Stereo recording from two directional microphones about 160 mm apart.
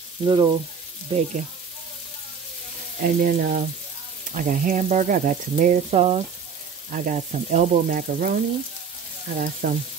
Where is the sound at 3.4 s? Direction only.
65° right (ahead or behind); by 6.2 s 40° right (ahead or behind).